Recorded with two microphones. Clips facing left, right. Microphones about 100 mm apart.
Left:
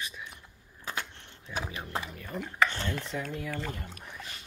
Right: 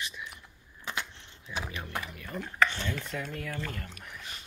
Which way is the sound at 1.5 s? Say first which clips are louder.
Left 1 dB; 40° left (ahead or behind).